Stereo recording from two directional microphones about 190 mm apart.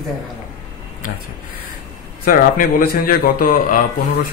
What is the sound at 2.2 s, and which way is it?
Speech, 50° left (ahead or behind).